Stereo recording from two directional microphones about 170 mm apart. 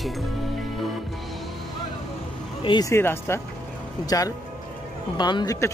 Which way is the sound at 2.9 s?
15° left (ahead or behind).